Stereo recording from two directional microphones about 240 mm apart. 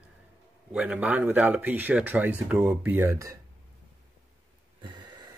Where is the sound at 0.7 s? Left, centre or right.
Centre.